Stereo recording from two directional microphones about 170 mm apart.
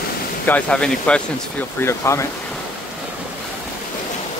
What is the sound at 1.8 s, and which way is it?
Speech, 15° left (ahead or behind).